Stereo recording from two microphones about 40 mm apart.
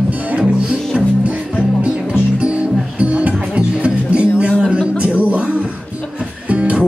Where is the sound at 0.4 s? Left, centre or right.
Right.